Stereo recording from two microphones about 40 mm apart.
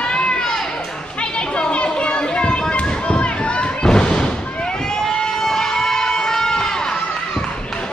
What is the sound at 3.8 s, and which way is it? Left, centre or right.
Music, centre.